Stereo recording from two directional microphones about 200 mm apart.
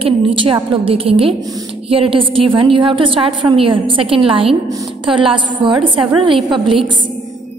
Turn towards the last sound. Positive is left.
turn(degrees=-25)  # may be behind; listen again after turning